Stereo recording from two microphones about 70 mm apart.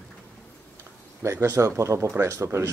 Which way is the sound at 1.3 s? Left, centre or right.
Right.